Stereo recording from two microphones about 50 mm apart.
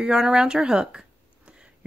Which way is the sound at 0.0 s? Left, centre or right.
Centre.